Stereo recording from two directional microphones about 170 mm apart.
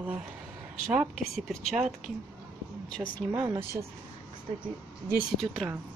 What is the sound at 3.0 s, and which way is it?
Speech, 15° right (ahead or behind).